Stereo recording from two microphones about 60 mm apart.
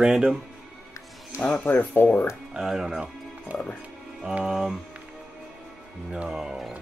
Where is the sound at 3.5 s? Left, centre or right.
Right.